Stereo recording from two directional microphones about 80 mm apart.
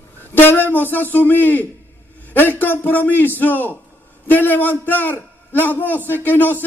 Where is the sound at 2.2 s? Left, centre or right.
Left.